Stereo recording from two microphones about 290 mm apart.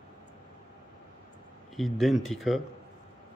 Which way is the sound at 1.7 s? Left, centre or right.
Centre.